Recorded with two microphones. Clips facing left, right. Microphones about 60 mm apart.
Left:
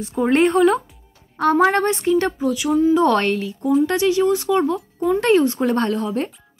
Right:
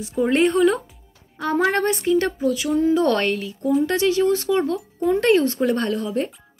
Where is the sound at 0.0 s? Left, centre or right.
Left.